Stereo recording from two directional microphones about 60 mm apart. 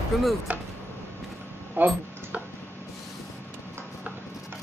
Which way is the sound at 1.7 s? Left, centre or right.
Right.